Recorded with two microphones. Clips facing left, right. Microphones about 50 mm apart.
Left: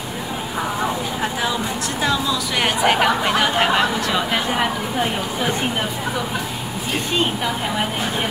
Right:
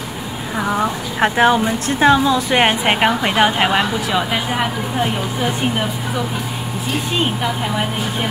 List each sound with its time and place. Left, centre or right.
1.2 s a woman's voice: right; by 3.8 s centre
4.1 s speech: centre